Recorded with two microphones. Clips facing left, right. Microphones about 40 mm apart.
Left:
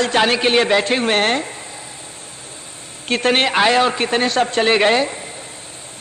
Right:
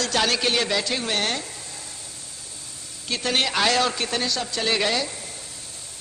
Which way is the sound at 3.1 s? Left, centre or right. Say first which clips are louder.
Left 8 dB; left.